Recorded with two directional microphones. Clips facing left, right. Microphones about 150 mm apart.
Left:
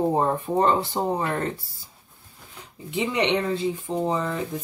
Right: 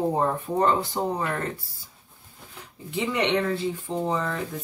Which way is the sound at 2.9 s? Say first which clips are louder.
Left 1 dB; 20° left (ahead or behind).